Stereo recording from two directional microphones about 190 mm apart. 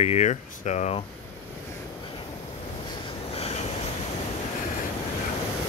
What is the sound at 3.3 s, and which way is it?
Train, 30° left (ahead or behind).